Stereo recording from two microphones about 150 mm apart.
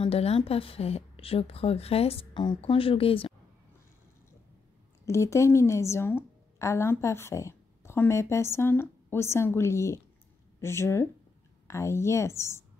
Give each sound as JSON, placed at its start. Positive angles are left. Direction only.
{"t": 0.0, "sound": "a woman's voice", "side_deg": 40}
{"t": 5.0, "sound": "a woman's voice", "side_deg": 20}